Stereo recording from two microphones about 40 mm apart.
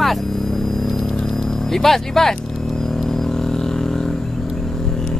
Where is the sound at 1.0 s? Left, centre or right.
Left.